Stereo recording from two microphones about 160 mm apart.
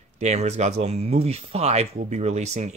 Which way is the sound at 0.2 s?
45° right (ahead or behind).